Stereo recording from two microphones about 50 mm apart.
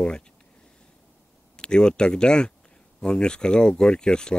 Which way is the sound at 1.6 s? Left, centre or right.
Centre.